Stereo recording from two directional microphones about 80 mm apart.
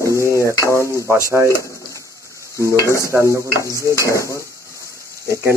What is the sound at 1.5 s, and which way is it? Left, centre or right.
Speech, left.